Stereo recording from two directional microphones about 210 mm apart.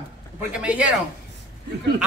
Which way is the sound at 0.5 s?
5° right (ahead or behind).